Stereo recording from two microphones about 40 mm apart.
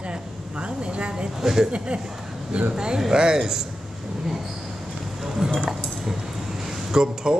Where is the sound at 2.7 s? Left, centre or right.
Centre.